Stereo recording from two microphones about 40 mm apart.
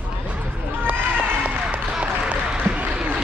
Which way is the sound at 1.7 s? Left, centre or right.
Right.